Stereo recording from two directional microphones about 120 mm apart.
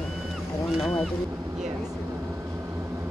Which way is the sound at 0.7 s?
Centre (ahead or behind).